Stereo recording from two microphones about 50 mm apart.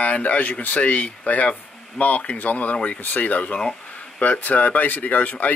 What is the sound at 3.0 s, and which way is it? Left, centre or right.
Speech, left.